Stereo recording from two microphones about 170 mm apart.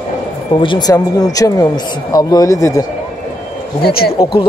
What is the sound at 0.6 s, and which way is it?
Speech, 25° left (ahead or behind).